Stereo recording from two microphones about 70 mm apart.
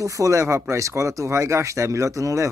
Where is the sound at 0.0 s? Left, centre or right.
Right.